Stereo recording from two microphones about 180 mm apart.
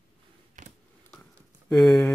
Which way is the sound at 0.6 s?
40° right (ahead or behind).